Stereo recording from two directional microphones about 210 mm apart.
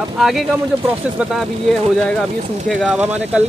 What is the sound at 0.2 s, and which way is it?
Speech, centre (ahead or behind).